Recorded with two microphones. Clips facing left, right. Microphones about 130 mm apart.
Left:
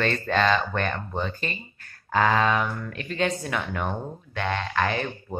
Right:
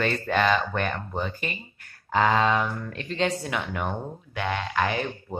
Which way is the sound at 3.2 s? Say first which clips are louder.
Even; 15° right (ahead or behind).